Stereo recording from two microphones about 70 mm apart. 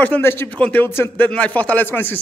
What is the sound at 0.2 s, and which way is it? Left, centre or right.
Speech, left.